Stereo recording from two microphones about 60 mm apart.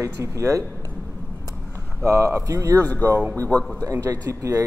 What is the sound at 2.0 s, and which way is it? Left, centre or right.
Speech, right.